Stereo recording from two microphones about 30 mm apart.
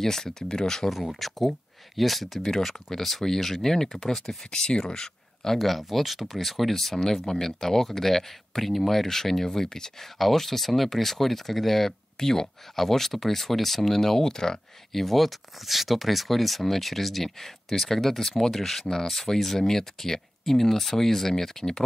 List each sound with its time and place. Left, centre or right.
0.0 s speech: centre
1.2 s speech: centre
3.9 s speech: centre
4.5 s speech: left
5.6 s speech: centre; by 9.9 s left
9.9 s speech: centre
14.9 s speech: centre